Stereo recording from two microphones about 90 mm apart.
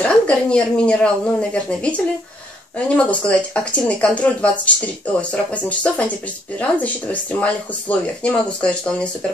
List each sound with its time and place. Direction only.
0.0 s speech: 10° left (ahead or behind)
3.1 s speech: 15° left (ahead or behind)